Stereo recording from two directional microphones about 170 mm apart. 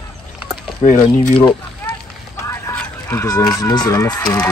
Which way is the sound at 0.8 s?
35° left (ahead or behind).